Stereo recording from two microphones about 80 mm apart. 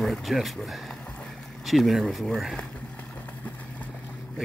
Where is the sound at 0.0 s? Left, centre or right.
Centre.